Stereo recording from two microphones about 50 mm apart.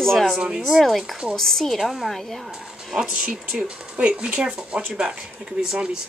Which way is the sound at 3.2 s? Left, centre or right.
Right.